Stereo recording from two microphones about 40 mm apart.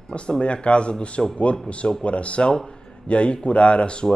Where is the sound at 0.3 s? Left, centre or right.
Left.